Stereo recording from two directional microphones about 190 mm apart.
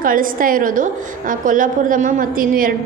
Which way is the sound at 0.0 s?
45° right (ahead or behind).